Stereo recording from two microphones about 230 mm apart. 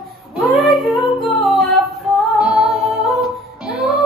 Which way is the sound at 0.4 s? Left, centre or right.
Centre.